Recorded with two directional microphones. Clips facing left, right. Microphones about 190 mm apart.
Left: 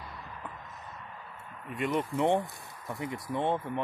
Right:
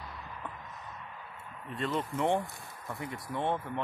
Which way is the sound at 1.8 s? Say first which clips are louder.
Left 3 dB; 15° left (ahead or behind).